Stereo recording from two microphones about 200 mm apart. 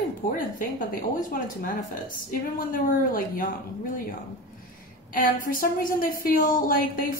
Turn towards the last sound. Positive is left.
turn(degrees=45)  # may be behind; listen again after turning